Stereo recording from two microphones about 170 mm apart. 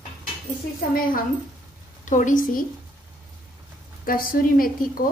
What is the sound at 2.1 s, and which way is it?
Speech, 50° left (ahead or behind).